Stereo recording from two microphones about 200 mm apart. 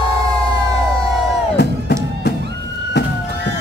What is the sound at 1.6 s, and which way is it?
Music, 55° left (ahead or behind).